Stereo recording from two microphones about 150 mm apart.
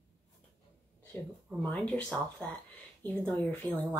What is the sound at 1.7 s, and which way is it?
Speech, 5° left (ahead or behind).